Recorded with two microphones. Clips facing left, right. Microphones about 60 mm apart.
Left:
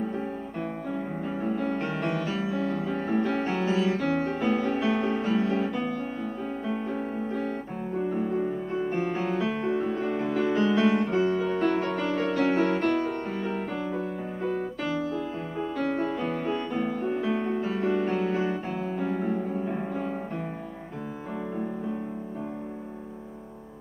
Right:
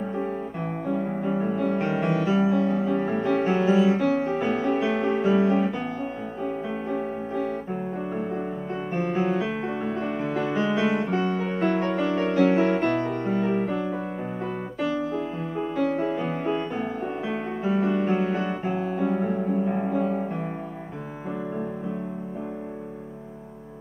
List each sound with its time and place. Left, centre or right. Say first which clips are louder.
0.2 s music: right 3 dB; centre
2.9 s music: right 3 dB; centre
8.9 s music: right 6 dB; centre
11.5 s music: right 1 dB; centre
11.8 s music: right 3 dB; centre
15.5 s music: right 4 dB; centre